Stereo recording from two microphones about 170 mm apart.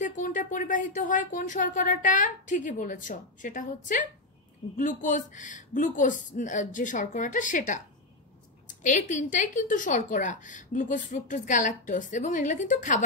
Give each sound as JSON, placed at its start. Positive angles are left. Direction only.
{"t": 0.0, "sound": "a woman's voice", "side_deg": 50}